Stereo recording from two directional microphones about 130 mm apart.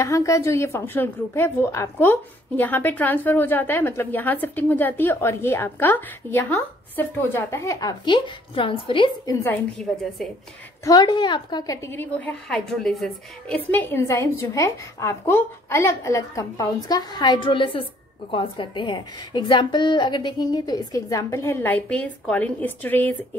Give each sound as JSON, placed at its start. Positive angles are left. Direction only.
{"t": 0.0, "sound": "a woman's voice", "side_deg": 25}
{"t": 8.0, "sound": "a woman's voice", "side_deg": 40}
{"t": 9.2, "sound": "a woman's voice", "side_deg": 20}
{"t": 10.8, "sound": "a woman's voice", "side_deg": 30}
{"t": 13.7, "sound": "a woman's voice", "side_deg": 15}